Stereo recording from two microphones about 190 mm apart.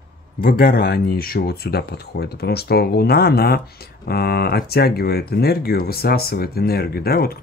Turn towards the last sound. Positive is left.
turn(degrees=55)  # may be behind; listen again after turning